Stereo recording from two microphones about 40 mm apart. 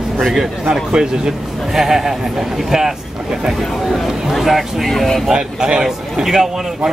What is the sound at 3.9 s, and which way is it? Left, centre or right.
Speech, centre.